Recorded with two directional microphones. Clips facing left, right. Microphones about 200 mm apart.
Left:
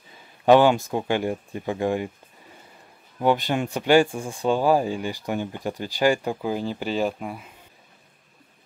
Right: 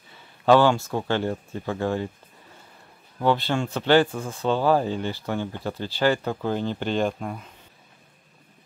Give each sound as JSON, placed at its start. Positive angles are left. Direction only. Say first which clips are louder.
{"t": 0.5, "sound": "speech", "louder": "left 2 dB", "side_deg": 15}
{"t": 3.2, "sound": "speech", "louder": "left 1 dB", "side_deg": 15}